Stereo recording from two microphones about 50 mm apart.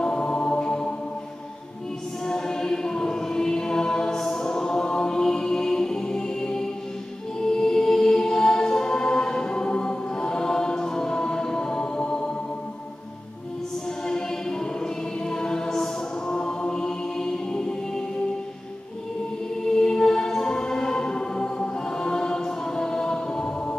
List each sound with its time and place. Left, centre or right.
0.0 s music: centre
2.2 s choir: centre
7.3 s music: centre
14.0 s choir: centre
19.6 s music: centre